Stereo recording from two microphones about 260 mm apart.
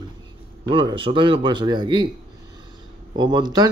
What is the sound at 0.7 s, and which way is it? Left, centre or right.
Speech, centre.